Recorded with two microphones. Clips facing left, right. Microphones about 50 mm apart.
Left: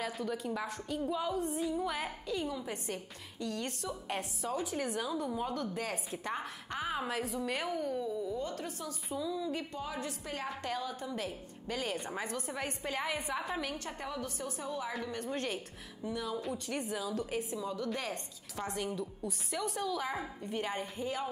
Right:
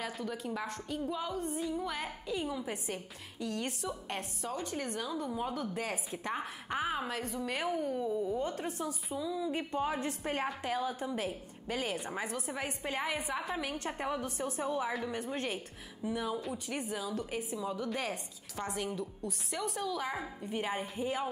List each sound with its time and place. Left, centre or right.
0.0 s a woman's voice: centre
2.3 s a woman's voice: centre
7.7 s a woman's voice: centre
8.0 s a woman's voice: right
9.1 s a woman's voice: centre
9.7 s a woman's voice: right
10.6 s a woman's voice: centre
13.7 s a woman's voice: right
14.9 s a woman's voice: centre
16.3 s a woman's voice: centre